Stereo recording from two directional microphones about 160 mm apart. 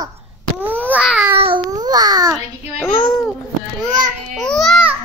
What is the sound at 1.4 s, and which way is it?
Speech, 30° right (ahead or behind).